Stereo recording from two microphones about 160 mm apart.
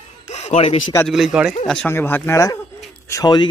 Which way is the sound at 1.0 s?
Centre (ahead or behind).